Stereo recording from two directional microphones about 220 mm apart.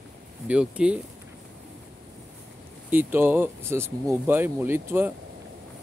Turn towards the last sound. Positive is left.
turn(degrees=-10)  # may be behind; listen again after turning